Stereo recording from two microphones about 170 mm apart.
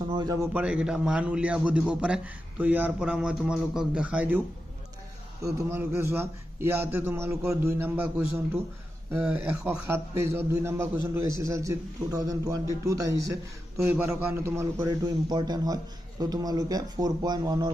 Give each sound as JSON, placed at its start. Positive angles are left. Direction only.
{"t": 0.1, "sound": "a man's voice", "side_deg": -20}
{"t": 0.5, "sound": "a man's voice", "side_deg": -5}
{"t": 5.4, "sound": "a man's voice", "side_deg": -15}
{"t": 9.1, "sound": "a man's voice", "side_deg": -10}